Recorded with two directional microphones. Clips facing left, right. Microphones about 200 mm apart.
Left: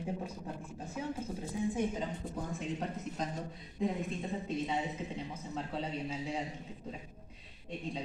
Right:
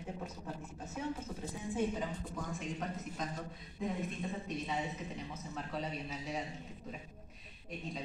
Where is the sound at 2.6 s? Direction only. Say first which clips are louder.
Left 3 dB; 30° left (ahead or behind).